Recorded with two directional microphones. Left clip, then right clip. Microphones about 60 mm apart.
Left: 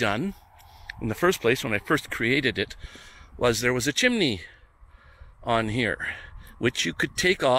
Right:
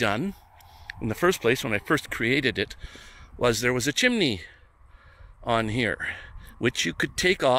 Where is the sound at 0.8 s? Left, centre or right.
Right.